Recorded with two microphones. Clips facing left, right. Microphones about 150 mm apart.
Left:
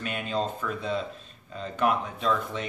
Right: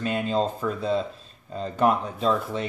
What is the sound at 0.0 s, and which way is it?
Speech, 35° right (ahead or behind).